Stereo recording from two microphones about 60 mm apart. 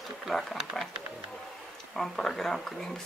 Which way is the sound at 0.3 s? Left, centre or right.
Centre.